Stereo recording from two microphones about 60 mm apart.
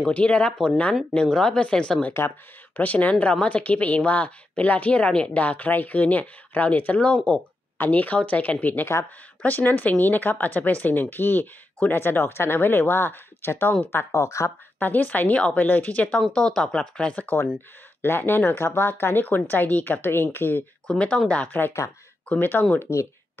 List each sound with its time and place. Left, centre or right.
0.0 s a woman's voice: centre
2.7 s a woman's voice: left
14.1 s speech: left
14.8 s a woman's voice: left
16.2 s speech: centre
18.0 s speech: left
20.8 s a woman's voice: centre